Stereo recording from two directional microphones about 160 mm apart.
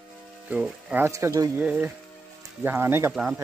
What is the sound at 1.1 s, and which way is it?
Speech, 20° right (ahead or behind).